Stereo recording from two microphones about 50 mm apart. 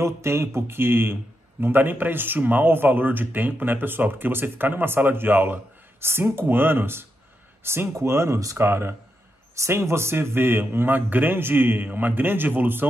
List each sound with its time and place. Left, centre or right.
0.0 s a man's voice: right